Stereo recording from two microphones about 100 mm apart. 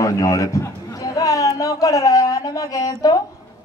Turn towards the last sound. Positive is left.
turn(degrees=40)  # may be behind; listen again after turning